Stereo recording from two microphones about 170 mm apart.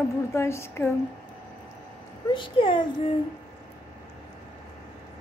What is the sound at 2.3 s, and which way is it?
Speech, 30° left (ahead or behind).